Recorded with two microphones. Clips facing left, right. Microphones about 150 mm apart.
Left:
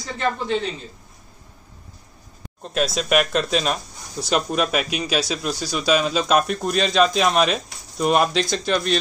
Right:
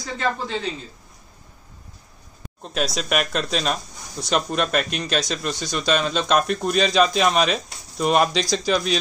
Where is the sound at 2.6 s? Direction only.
Centre (ahead or behind).